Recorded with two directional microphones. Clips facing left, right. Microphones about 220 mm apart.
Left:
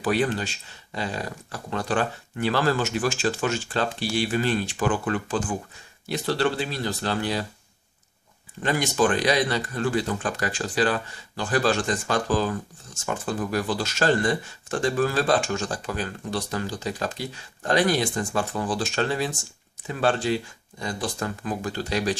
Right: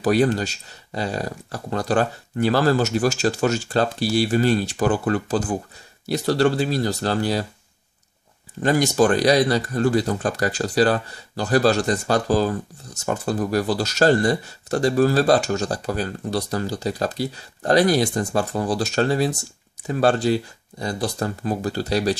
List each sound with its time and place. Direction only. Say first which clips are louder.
0.0 s speech: right 5 dB; 40° right (ahead or behind)
8.6 s speech: right 5 dB; 40° right (ahead or behind)